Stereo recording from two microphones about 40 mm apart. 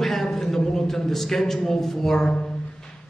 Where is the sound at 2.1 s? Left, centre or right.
Centre.